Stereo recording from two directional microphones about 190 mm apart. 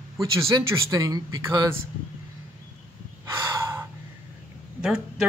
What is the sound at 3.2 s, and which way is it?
Gasp, 15° right (ahead or behind).